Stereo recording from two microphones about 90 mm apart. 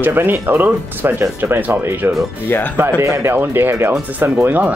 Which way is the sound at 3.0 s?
35° right (ahead or behind).